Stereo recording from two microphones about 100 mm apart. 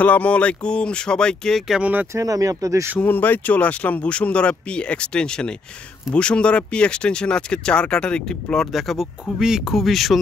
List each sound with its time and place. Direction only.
0.0 s speech: 15° left (ahead or behind)
1.7 s speech: 15° right (ahead or behind)
2.1 s speech: 35° right (ahead or behind)
3.0 s speech: 15° left (ahead or behind); by 10.1 s centre (ahead or behind)